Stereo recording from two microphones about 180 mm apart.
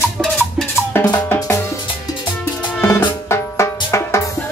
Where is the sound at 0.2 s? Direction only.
5° left (ahead or behind).